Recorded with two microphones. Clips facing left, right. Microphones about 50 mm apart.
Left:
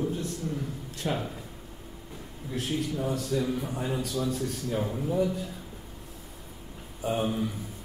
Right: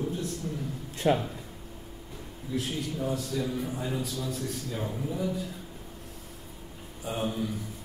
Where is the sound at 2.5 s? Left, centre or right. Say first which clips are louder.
Left 2 dB; left.